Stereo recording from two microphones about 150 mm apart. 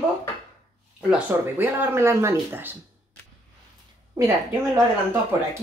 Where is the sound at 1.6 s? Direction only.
15° right (ahead or behind).